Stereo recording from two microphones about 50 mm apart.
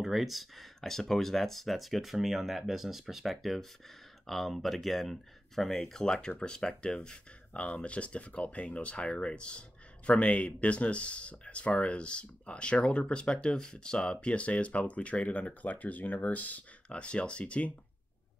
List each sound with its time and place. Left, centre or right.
0.0 s speech: centre; by 16.6 s left
16.9 s speech: left